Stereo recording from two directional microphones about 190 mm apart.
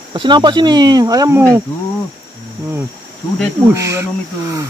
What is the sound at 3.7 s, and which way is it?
Speech, 15° right (ahead or behind).